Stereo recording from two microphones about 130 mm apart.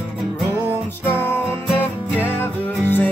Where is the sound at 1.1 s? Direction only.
15° left (ahead or behind).